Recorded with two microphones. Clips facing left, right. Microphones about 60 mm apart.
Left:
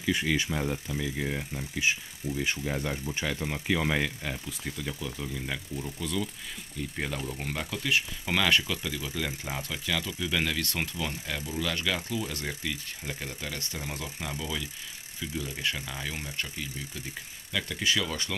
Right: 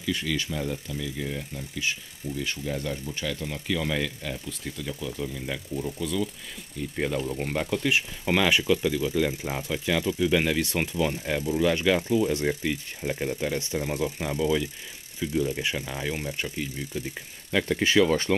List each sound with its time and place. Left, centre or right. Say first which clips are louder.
0.0 s speech: left 1 dB; centre; by 18.3 s right